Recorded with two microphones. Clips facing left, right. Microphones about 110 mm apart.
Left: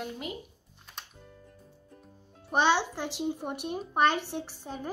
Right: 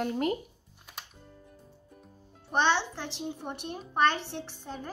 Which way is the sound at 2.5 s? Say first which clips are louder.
Left 1 dB; 10° left (ahead or behind).